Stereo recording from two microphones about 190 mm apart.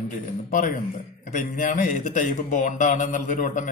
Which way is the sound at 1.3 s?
45° left (ahead or behind).